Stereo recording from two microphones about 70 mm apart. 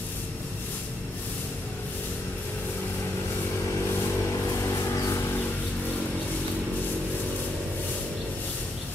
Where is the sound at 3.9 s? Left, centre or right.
Left.